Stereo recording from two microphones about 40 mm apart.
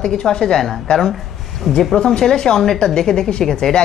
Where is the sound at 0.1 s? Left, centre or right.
Centre.